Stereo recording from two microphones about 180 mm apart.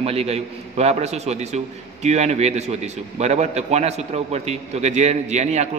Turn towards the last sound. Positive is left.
turn(degrees=-40)  # may be behind; listen again after turning